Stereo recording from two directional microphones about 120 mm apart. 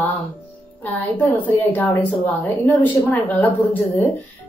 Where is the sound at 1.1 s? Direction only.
15° left (ahead or behind).